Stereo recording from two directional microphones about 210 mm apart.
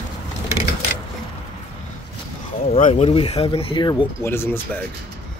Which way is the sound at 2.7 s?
30° left (ahead or behind).